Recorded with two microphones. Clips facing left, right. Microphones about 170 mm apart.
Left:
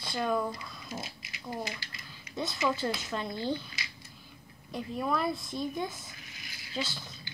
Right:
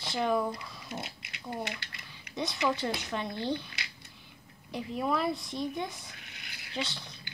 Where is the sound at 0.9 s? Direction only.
65° right (ahead or behind).